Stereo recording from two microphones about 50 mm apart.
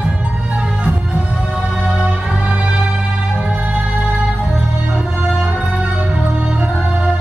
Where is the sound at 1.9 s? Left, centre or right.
Centre.